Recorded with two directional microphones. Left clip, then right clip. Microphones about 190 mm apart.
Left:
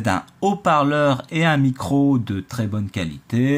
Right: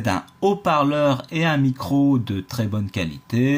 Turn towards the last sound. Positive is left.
turn(degrees=10)  # may be behind; listen again after turning